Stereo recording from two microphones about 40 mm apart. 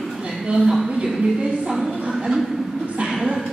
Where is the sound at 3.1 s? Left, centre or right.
Centre.